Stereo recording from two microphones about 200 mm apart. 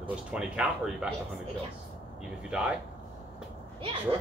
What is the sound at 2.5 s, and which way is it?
Speech, 5° right (ahead or behind).